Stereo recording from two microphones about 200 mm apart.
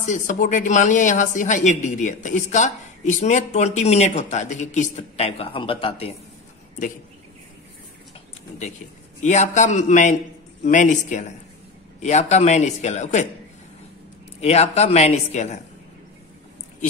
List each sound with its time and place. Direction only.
0.0 s a woman's voice: 40° left (ahead or behind)
9.2 s a woman's voice: 35° left (ahead or behind)
14.4 s a woman's voice: 30° left (ahead or behind)